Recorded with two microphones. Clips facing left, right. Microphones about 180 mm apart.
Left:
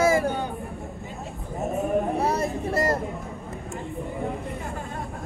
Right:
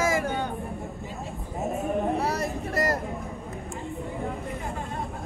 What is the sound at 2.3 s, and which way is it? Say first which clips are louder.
Vehicle: left 3 dB; 25° left (ahead or behind).